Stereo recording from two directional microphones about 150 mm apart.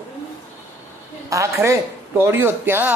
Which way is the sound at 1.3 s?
20° right (ahead or behind).